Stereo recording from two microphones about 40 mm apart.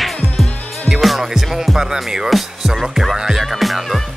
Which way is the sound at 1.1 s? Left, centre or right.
Centre.